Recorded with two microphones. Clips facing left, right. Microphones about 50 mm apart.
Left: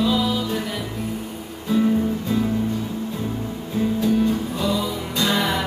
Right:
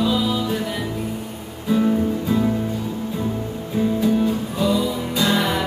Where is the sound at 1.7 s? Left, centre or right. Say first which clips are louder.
Right 1 dB; centre.